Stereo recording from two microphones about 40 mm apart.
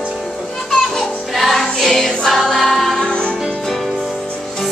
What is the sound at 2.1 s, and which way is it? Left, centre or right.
Choir, centre.